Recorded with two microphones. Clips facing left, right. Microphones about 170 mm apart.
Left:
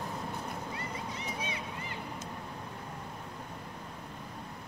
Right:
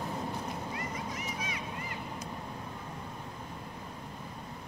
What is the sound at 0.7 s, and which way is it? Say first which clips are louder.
Vehicle: right 2 dB; 30° left (ahead or behind).